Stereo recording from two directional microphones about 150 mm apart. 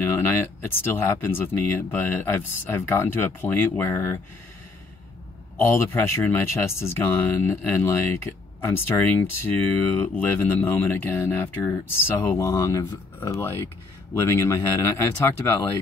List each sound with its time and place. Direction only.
0.7 s speech: 15° left (ahead or behind)
5.7 s speech: 15° left (ahead or behind)